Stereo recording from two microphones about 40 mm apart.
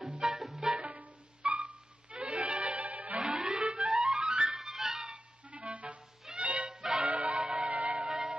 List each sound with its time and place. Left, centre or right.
0.2 s music: centre
0.8 s music: right
3.2 s music: centre
3.7 s clarinet: right
4.0 s music: centre
4.3 s music: right
4.6 s music: centre
5.1 s music: right
7.7 s music: right
8.1 s music: right